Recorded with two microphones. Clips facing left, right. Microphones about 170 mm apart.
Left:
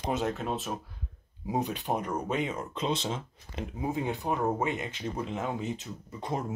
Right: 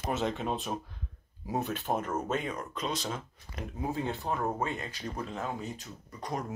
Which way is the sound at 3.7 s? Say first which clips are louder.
Left 2 dB; 15° left (ahead or behind).